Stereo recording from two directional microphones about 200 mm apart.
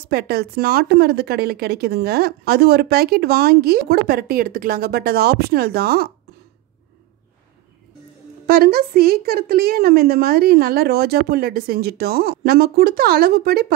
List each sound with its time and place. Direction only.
0.1 s a woman's voice: 50° right (ahead or behind)
8.5 s a woman's voice: 50° right (ahead or behind)